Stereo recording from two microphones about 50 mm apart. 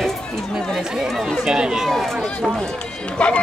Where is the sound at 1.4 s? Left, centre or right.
Centre.